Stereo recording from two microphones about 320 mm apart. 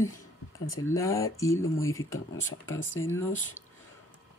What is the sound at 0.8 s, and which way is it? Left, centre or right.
Speech, centre.